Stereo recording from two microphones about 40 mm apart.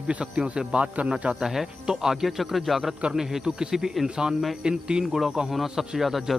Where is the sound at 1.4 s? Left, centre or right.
Centre.